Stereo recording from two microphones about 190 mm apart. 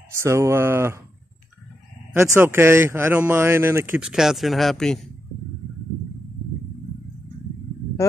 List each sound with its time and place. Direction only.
0.1 s speech: 15° right (ahead or behind)
2.3 s speech: 10° right (ahead or behind)
8.0 s a sound: 15° left (ahead or behind)